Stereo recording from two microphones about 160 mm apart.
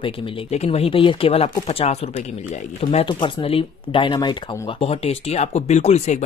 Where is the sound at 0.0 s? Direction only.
35° left (ahead or behind).